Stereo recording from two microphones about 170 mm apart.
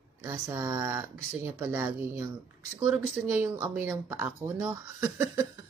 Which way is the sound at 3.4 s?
10° right (ahead or behind).